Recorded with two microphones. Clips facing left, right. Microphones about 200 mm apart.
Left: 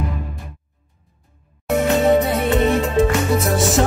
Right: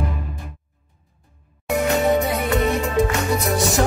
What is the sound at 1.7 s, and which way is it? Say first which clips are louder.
Music: left 3 dB; centre (ahead or behind).